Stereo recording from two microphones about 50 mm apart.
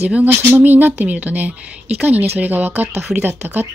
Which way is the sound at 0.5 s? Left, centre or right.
Right.